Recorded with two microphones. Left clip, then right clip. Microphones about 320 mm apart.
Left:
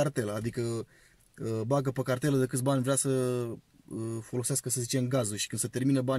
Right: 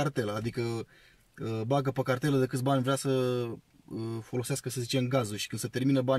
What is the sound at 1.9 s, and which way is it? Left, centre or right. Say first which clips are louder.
Speech: right 1 dB; right.